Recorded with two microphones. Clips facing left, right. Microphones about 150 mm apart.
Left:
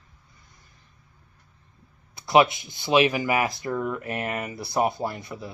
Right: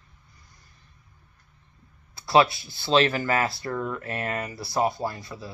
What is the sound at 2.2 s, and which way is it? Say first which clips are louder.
Speech: left 1 dB; 20° left (ahead or behind).